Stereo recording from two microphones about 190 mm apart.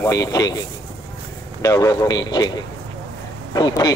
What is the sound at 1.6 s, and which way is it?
A man's voice, 15° left (ahead or behind).